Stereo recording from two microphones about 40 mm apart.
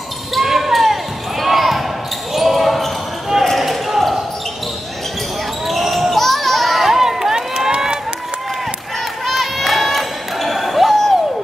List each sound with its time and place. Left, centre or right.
0.3 s basketball bounce: centre
5.7 s basketball bounce: centre
6.9 s run: centre
9.2 s a sound: centre